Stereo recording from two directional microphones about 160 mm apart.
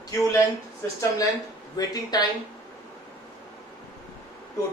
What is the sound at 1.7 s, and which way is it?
Speech, 25° left (ahead or behind).